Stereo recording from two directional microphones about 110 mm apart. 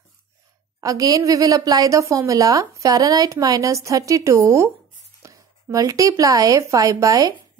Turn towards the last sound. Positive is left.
turn(degrees=-30)  # may be behind; listen again after turning